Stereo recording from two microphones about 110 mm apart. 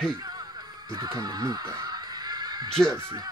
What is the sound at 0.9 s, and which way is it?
Music, 30° right (ahead or behind).